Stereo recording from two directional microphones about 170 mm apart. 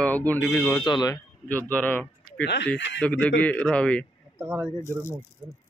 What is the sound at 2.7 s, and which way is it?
Speech, 90° left.